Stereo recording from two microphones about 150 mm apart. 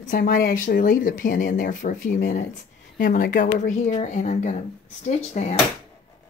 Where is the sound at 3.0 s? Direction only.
65° left (ahead or behind).